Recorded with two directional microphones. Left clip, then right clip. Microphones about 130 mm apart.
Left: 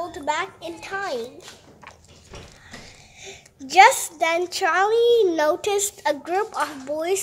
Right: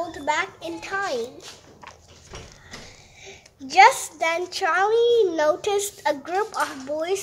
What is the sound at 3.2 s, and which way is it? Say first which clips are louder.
A woman's voice: left 2 dB; 30° left (ahead or behind).